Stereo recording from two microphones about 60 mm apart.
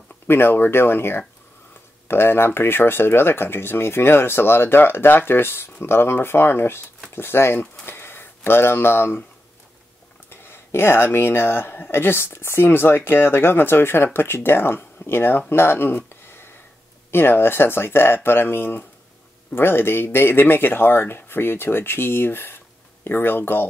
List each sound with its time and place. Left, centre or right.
0.3 s speech: left
7.8 s a sound: left
10.3 s speech: left